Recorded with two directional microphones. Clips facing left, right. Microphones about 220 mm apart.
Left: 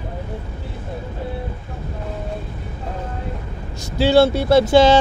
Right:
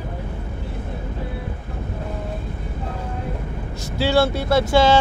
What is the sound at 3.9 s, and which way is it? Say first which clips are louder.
Speech: left 5 dB; 20° left (ahead or behind).